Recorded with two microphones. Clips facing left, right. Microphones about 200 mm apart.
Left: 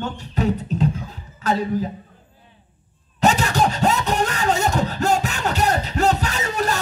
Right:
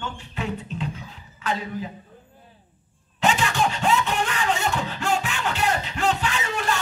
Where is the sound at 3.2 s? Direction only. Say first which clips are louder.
Left 4 dB; 40° left (ahead or behind).